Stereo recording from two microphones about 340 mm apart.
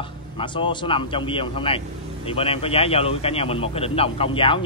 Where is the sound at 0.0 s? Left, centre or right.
Centre.